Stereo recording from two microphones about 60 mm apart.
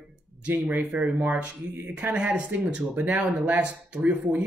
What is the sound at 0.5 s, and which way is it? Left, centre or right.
Speech, right.